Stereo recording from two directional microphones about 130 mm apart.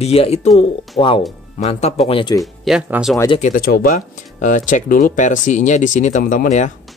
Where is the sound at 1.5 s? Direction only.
55° left (ahead or behind).